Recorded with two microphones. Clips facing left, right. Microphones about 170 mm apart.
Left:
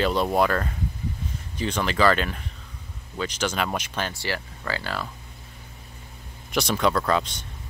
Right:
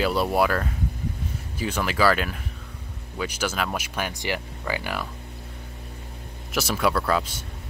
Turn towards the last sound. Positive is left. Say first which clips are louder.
# left 1 dB
turn(degrees=-5)  # may be behind; listen again after turning